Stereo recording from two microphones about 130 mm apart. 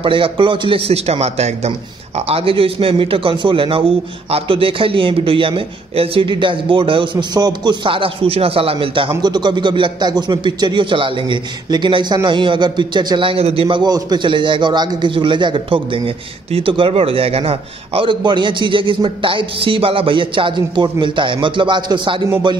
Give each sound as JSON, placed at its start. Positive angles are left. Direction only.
{"t": 0.0, "sound": "a man's voice", "side_deg": -40}